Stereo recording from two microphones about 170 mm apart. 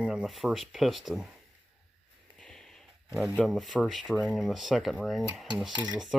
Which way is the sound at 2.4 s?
5° left (ahead or behind).